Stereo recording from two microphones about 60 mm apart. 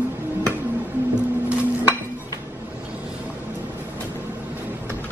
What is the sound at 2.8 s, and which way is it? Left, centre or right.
Boat, right.